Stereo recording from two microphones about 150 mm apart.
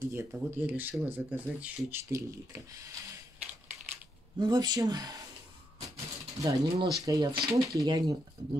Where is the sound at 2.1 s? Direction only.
20° right (ahead or behind).